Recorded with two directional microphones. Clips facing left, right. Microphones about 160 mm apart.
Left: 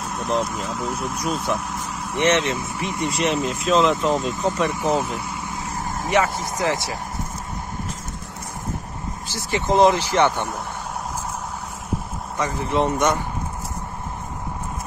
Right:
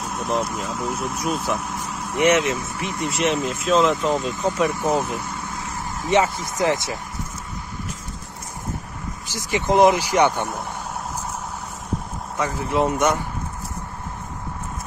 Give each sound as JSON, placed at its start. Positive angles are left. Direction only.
{"t": 0.0, "sound": "speech", "side_deg": 0}
{"t": 6.3, "sound": "speech", "side_deg": 20}
{"t": 6.6, "sound": "speech", "side_deg": -20}
{"t": 9.3, "sound": "speech", "side_deg": -15}
{"t": 12.4, "sound": "speech", "side_deg": -5}